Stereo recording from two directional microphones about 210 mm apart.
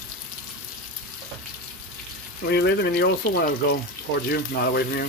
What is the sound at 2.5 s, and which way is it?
Speech, 50° left (ahead or behind).